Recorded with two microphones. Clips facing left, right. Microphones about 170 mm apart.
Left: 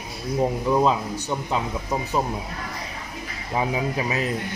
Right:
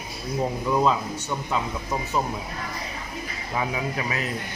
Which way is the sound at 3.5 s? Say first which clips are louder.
Left 3 dB; 20° left (ahead or behind).